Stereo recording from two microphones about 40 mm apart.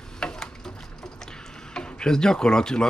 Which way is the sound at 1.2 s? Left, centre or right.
Left.